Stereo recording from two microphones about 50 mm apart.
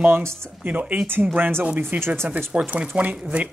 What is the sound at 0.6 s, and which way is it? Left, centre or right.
Speech, right.